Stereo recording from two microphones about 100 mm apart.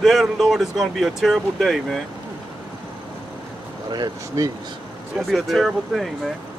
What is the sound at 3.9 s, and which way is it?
Speech, 40° right (ahead or behind).